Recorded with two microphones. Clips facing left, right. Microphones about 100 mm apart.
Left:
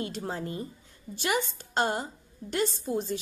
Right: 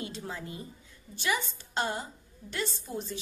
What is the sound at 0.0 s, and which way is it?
A woman's voice, 45° left (ahead or behind).